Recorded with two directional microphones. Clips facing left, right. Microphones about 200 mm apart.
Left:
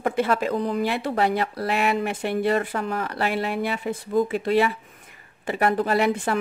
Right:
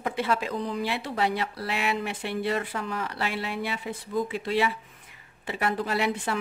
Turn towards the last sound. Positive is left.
turn(degrees=50)  # may be behind; listen again after turning